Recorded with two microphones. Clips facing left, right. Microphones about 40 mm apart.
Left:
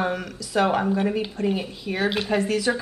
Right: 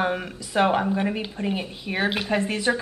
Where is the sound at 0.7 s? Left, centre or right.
Centre.